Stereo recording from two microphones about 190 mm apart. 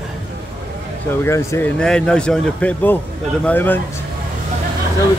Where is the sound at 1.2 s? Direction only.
15° left (ahead or behind).